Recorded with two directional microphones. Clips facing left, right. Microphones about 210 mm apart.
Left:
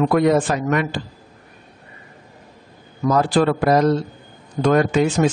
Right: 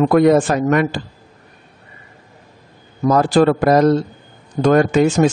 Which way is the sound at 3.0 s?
45° right (ahead or behind).